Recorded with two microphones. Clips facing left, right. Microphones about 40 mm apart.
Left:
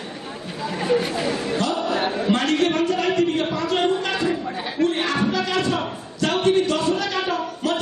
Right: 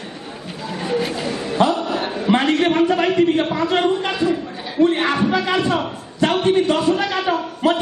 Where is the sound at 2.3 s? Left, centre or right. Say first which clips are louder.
Right 5 dB; right.